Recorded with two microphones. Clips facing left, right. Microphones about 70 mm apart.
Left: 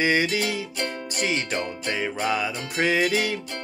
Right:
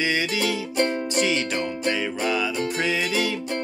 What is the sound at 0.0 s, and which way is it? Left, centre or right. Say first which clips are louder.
Music: left 2 dB; left.